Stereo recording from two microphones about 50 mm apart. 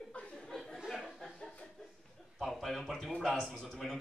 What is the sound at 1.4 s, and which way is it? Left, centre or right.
Chuckle, centre.